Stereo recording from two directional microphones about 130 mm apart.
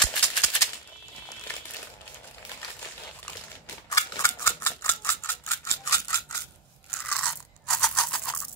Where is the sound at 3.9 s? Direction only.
25° left (ahead or behind).